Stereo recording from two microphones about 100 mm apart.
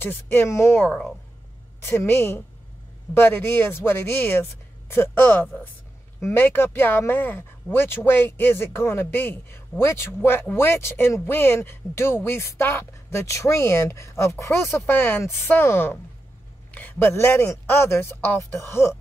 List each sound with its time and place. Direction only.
0.0 s speech: 20° left (ahead or behind)